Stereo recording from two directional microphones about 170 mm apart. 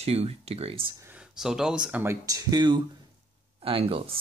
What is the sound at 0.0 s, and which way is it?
Speech, 35° right (ahead or behind).